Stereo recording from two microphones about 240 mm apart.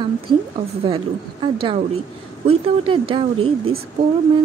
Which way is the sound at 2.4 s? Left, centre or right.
Right.